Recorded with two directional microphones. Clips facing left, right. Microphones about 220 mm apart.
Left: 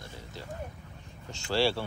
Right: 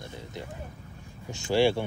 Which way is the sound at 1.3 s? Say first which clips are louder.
Right 5 dB; 15° right (ahead or behind).